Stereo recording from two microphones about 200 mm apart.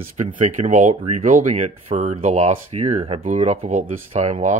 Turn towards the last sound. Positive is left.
turn(degrees=-35)  # may be behind; listen again after turning